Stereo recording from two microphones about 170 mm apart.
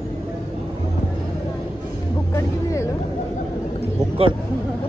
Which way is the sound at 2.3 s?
20° left (ahead or behind).